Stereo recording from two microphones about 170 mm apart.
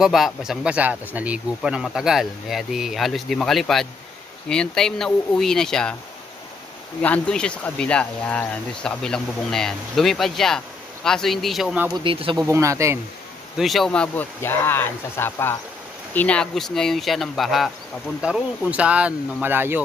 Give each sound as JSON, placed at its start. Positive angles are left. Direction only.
{"t": 0.0, "sound": "speech", "side_deg": -5}
{"t": 7.0, "sound": "speech", "side_deg": 5}
{"t": 11.9, "sound": "speech", "side_deg": -30}
{"t": 12.4, "sound": "speech", "side_deg": -15}
{"t": 13.6, "sound": "speech", "side_deg": 0}